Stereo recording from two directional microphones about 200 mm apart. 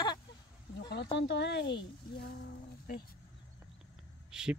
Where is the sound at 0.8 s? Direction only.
60° left (ahead or behind).